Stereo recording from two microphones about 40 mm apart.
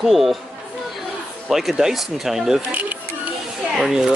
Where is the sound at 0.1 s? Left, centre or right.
Centre.